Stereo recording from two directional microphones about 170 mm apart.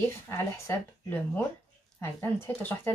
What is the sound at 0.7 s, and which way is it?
Speech, 10° left (ahead or behind).